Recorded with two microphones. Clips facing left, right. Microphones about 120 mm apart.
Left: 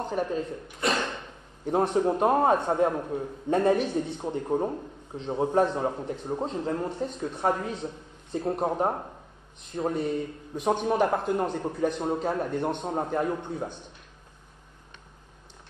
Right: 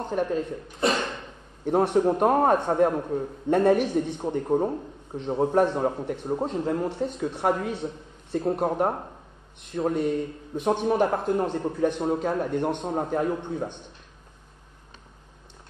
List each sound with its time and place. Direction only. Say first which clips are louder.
0.0 s a man's voice: right 2 dB; centre (ahead or behind)
1.7 s a man's voice: right 3 dB; 5° right (ahead or behind)